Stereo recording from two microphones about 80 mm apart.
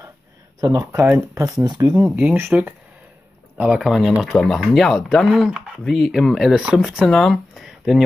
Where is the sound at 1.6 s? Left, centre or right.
Right.